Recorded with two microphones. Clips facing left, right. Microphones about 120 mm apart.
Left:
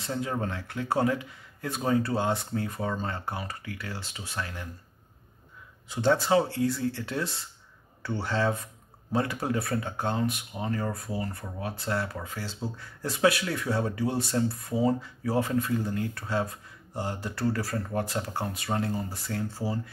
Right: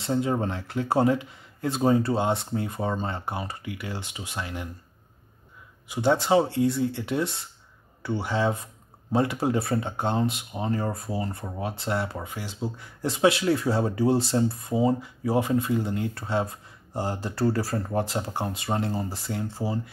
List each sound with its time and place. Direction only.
0.0 s speech: 25° right (ahead or behind)
5.9 s speech: 15° right (ahead or behind)